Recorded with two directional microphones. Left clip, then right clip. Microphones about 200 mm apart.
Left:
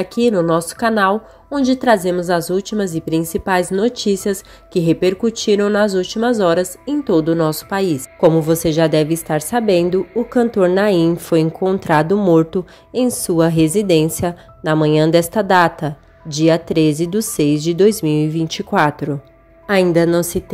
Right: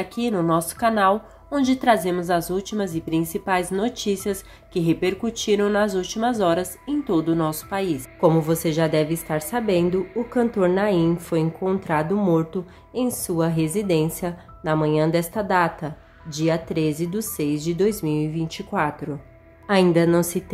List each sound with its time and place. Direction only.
0.0 s a woman's voice: 30° left (ahead or behind)
1.5 s a woman's voice: 15° left (ahead or behind)
8.3 s a woman's voice: 20° left (ahead or behind)
19.7 s a woman's voice: 20° left (ahead or behind)